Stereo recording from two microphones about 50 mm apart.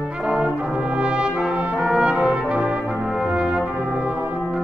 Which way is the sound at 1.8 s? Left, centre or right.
Centre.